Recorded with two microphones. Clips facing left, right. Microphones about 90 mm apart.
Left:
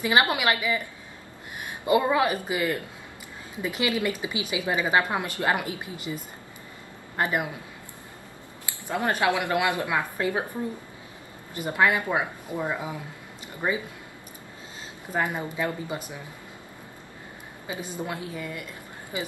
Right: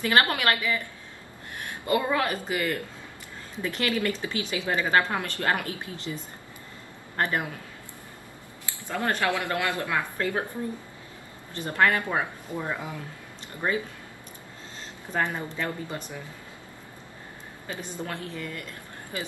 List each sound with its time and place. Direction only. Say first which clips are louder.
0.0 s speech: left 1 dB; 15° left (ahead or behind)
7.2 s speech: left 1 dB; 15° left (ahead or behind)
8.8 s speech: left 2 dB; 15° left (ahead or behind)
11.5 s speech: even; 15° left (ahead or behind)
15.1 s speech: left 1 dB; 15° left (ahead or behind)
17.6 s speech: left 2 dB; 10° left (ahead or behind)